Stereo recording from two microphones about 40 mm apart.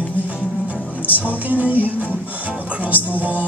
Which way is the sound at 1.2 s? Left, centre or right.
Right.